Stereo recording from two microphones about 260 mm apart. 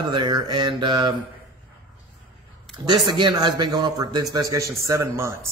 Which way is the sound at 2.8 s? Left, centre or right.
Centre.